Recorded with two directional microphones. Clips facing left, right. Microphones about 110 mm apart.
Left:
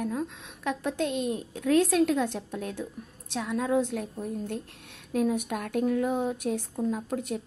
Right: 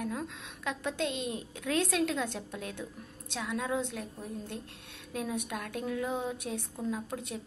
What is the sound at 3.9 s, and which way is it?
Speech, 60° left (ahead or behind).